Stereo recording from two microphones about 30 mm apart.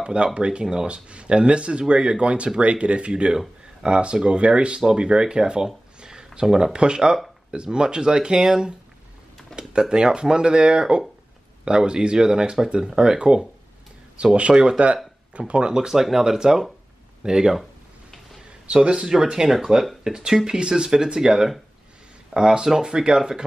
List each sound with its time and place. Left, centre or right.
0.0 s speech: right
5.9 s a sound: right
6.6 s speech: right
15.9 s speech: centre
18.7 s speech: right
19.5 s speech: centre
20.0 s speech: right